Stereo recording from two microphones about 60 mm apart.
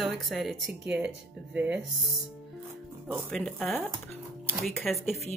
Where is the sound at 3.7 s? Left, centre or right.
Centre.